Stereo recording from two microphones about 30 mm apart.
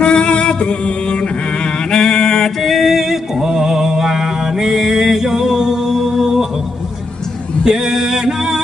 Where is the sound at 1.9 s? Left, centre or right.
Left.